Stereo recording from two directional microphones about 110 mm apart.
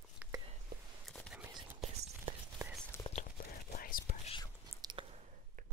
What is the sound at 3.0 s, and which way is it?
Whispering, 30° left (ahead or behind).